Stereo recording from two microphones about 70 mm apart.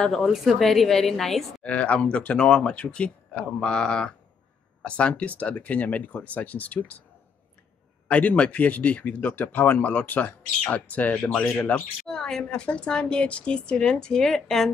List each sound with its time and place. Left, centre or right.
0.0 s a woman's voice: centre
1.6 s a woman's voice: centre
8.1 s speech: centre
12.1 s a woman's voice: centre